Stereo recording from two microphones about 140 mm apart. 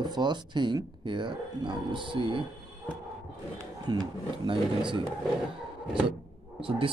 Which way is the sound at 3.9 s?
30° right (ahead or behind).